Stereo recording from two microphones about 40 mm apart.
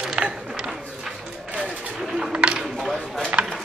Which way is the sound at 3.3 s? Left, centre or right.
Right.